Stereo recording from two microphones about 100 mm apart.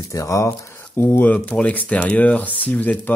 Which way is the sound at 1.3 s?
15° left (ahead or behind).